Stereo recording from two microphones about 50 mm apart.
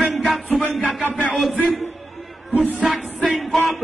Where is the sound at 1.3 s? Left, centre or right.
Centre.